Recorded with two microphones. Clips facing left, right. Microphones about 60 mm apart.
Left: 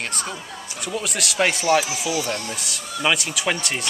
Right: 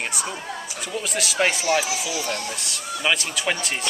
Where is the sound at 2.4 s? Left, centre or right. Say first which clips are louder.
Even; centre.